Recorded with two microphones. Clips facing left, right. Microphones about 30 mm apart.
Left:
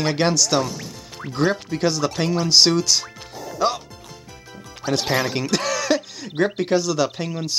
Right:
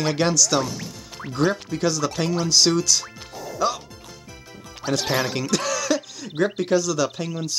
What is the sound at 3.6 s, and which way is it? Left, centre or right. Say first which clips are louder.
Music: left 2 dB; left.